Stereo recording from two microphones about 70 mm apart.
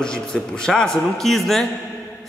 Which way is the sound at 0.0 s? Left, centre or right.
Centre.